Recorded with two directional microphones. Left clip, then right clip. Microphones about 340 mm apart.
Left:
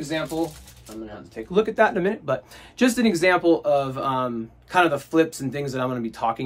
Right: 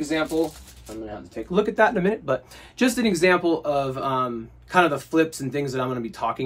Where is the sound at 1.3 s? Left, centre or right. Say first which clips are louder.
Left 1 dB; centre.